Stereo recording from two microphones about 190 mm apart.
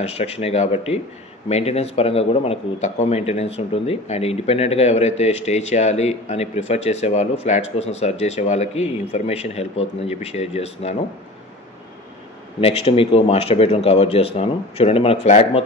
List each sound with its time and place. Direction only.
0.1 s speech: 35° left (ahead or behind)
12.5 s speech: 30° left (ahead or behind)